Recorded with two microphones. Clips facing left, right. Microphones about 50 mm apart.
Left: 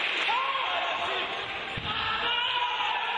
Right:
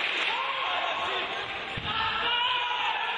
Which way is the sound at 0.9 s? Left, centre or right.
Left.